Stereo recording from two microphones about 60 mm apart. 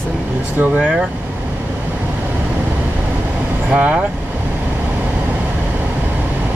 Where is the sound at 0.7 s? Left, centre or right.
Centre.